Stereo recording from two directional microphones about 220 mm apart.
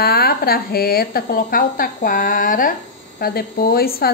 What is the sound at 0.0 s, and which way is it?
A woman's voice, 45° left (ahead or behind).